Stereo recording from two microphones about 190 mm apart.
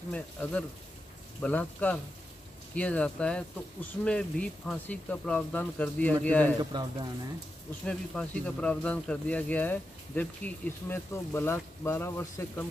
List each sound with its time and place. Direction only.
0.1 s speech: 5° left (ahead or behind)
6.6 s speech: 20° right (ahead or behind)
7.8 s speech: 5° left (ahead or behind)